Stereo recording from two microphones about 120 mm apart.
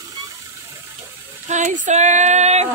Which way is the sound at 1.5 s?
85° right.